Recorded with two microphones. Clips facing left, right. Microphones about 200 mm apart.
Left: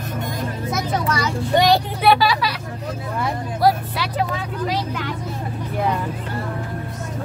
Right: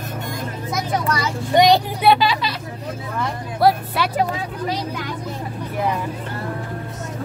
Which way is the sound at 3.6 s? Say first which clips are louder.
Right 2 dB; 60° right (ahead or behind).